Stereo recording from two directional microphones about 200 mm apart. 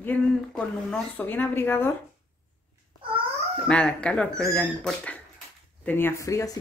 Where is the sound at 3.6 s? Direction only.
5° left (ahead or behind).